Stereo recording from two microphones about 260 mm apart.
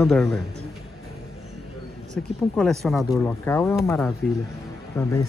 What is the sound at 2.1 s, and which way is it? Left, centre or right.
A man's voice, centre.